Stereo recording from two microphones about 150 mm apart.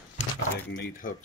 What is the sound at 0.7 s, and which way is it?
Speech, 70° left (ahead or behind).